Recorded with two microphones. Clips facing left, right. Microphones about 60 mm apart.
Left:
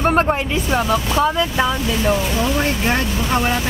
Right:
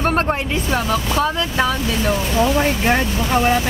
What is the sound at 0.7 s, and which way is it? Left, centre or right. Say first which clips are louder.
Speech: left 2 dB; left.